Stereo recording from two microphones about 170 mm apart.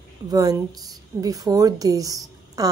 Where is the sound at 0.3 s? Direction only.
20° right (ahead or behind).